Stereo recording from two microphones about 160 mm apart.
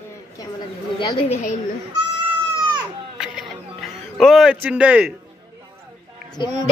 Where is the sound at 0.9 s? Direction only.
30° left (ahead or behind).